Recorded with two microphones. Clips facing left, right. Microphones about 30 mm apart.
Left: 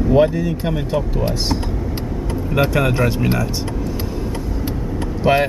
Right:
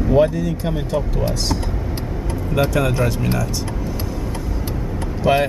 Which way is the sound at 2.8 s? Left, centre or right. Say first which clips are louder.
Left 2 dB; centre.